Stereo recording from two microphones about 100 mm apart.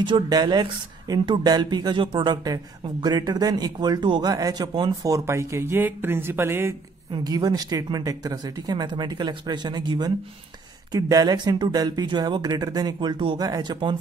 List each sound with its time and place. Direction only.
0.0 s speech: 45° right (ahead or behind); by 6.7 s 25° right (ahead or behind)
7.1 s speech: 45° right (ahead or behind)